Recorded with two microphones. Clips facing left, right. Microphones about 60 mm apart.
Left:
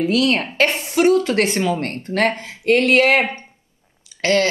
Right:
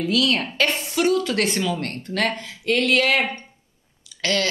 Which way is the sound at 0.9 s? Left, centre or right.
Left.